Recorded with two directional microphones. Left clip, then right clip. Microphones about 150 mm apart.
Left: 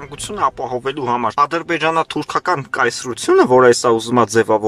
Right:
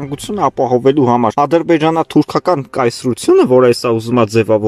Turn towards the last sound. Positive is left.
turn(degrees=-10)  # may be behind; listen again after turning